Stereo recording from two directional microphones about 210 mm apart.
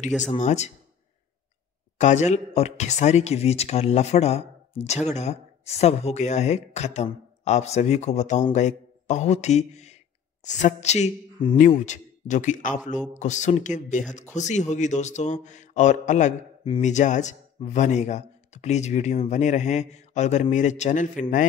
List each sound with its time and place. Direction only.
0.4 s a man's voice: 35° left (ahead or behind)
2.0 s a man's voice: 35° left (ahead or behind)